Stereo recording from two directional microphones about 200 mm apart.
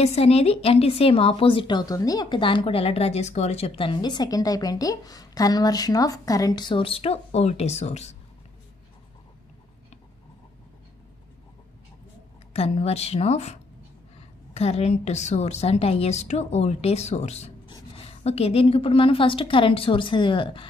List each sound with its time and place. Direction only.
0.0 s a woman's voice: 30° left (ahead or behind)
12.5 s a woman's voice: 30° left (ahead or behind)